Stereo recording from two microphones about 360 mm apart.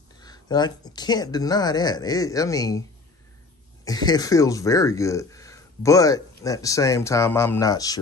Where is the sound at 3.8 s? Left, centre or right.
Centre.